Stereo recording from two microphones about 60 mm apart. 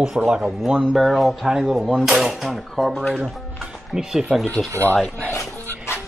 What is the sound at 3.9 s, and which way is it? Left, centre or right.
Speech, centre.